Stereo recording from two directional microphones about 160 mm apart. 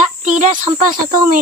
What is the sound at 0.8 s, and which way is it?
Speech, 55° right (ahead or behind).